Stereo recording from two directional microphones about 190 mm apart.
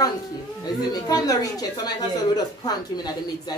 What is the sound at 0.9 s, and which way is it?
A woman's voice, 20° left (ahead or behind).